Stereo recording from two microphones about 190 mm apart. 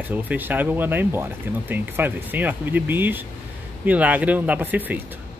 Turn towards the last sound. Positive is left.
turn(degrees=-10)  # may be behind; listen again after turning